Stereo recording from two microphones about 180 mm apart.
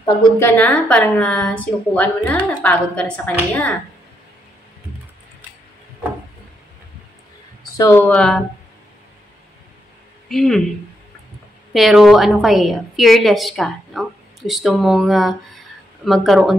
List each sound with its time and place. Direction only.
0.1 s a woman's voice: 10° left (ahead or behind)
7.7 s a woman's voice: 15° left (ahead or behind)
10.2 s speech: centre (ahead or behind)
11.7 s a woman's voice: centre (ahead or behind)